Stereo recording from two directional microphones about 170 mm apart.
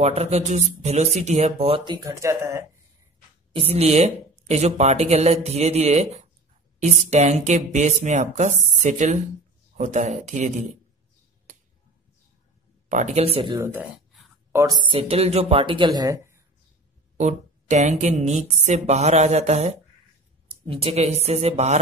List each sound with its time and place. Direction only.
0.0 s speech: 40° right (ahead or behind); by 2.6 s 15° right (ahead or behind)
3.5 s speech: 35° right (ahead or behind)
11.5 s finger snapping: 50° right (ahead or behind)
12.8 s speech: 45° right (ahead or behind)
13.6 s speech: 15° right (ahead or behind)
14.9 s speech: 35° right (ahead or behind); by 16.4 s 15° right (ahead or behind)
17.2 s speech: 45° right (ahead or behind)